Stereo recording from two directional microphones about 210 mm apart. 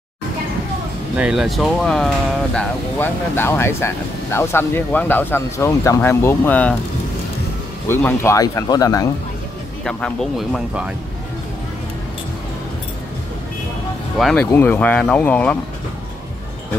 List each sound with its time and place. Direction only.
1.1 s speech: 5° right (ahead or behind)
7.9 s speech: 10° left (ahead or behind)
9.8 s speech: 5° left (ahead or behind)
14.1 s speech: 5° left (ahead or behind)